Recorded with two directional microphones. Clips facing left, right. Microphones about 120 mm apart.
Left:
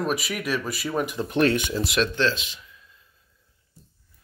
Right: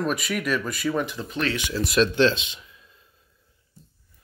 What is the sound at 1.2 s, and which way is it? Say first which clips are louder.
Speech: left 6 dB; 55° left (ahead or behind).